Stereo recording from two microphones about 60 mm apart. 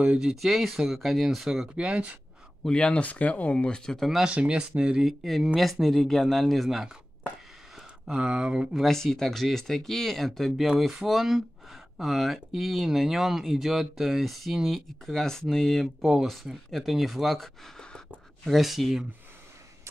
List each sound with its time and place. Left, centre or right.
0.2 s speech: centre
1.8 s speech: centre
2.6 s speech: centre
4.0 s speech: centre
4.3 s speech: centre
5.0 s speech: centre
8.1 s speech: centre
8.8 s speech: centre